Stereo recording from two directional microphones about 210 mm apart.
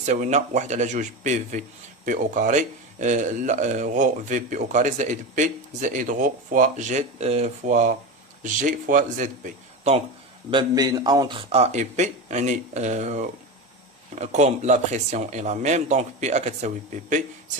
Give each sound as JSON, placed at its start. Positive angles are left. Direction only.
{"t": 0.0, "sound": "a man's voice", "side_deg": -35}
{"t": 10.5, "sound": "a man's voice", "side_deg": -20}